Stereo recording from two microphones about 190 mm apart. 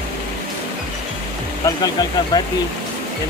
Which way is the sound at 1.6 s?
20° left (ahead or behind).